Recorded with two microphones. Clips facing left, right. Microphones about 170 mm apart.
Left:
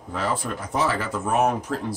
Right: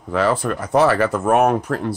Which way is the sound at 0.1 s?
75° right (ahead or behind).